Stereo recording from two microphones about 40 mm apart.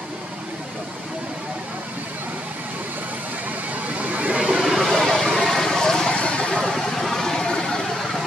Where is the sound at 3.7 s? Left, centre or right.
Right.